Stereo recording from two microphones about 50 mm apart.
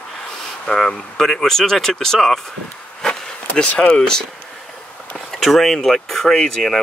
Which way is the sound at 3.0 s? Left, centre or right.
Centre.